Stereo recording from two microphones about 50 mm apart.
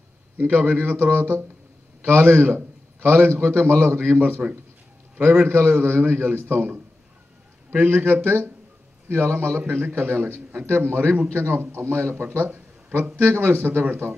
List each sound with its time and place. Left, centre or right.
0.4 s a man's voice: right
4.2 s a man's voice: right
5.4 s a man's voice: right